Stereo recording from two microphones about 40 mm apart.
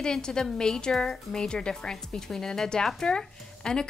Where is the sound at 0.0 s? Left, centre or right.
Centre.